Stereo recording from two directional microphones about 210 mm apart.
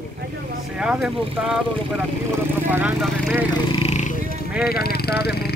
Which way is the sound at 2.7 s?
5° right (ahead or behind).